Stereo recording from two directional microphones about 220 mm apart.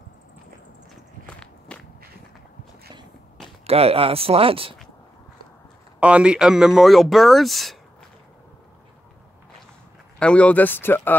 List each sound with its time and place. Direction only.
1.2 s walk: 5° left (ahead or behind)
3.6 s speech: 25° right (ahead or behind)
5.9 s speech: 5° right (ahead or behind)
10.1 s speech: 5° left (ahead or behind)